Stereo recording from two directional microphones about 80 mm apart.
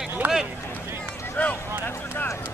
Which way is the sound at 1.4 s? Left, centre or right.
Left.